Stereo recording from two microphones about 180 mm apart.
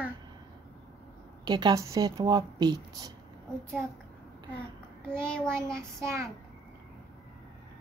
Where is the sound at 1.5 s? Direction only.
25° right (ahead or behind).